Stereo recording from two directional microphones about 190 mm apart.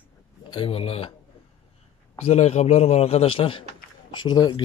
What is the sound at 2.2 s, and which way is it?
A man's voice, 35° left (ahead or behind).